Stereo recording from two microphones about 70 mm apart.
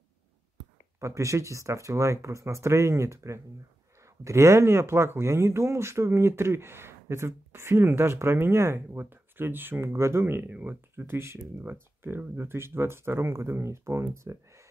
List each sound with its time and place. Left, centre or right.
0.9 s speech: right